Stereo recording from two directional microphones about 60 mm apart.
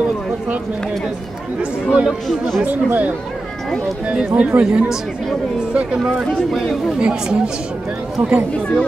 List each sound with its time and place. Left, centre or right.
1.6 s speech: centre
2.0 s speech: centre
2.6 s speech: right
4.6 s speech: centre
6.5 s speech: centre
8.2 s speech: right